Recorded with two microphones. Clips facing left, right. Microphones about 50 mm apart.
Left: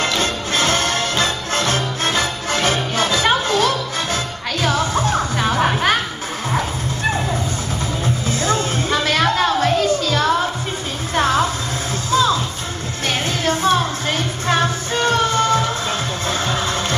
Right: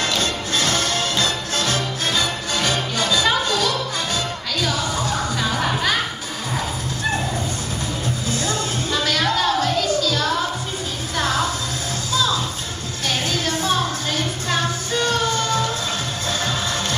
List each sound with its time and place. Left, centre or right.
0.0 s music: left
8.3 s music: left